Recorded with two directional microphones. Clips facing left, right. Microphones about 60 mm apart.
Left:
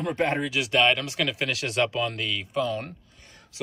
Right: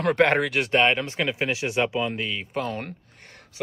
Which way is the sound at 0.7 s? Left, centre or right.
Right.